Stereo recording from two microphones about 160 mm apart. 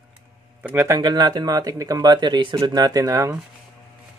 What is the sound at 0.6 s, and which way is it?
Speech, 15° right (ahead or behind).